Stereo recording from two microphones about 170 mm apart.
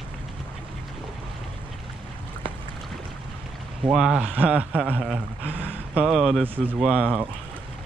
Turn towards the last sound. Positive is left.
turn(degrees=-5)  # may be behind; listen again after turning